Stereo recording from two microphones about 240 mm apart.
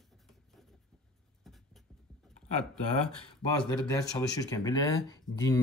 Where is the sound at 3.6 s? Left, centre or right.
Centre.